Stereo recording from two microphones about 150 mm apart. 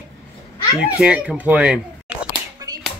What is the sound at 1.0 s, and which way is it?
Speech, 5° right (ahead or behind).